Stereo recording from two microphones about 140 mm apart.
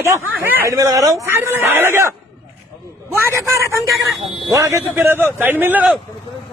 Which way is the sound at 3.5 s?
20° right (ahead or behind).